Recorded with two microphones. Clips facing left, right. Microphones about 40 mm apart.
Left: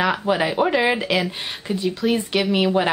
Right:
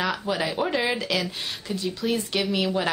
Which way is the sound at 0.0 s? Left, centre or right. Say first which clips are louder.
Left 6 dB; left.